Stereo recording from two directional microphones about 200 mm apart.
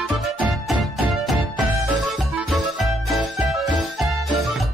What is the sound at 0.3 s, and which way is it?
Music, centre (ahead or behind).